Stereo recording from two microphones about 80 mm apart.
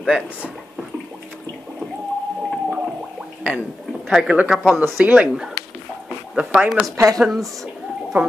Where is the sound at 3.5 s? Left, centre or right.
Centre.